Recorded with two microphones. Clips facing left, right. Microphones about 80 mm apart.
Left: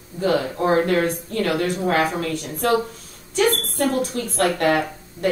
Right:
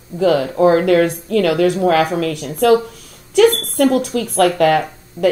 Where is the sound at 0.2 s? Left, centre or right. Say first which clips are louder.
Right 7 dB; right.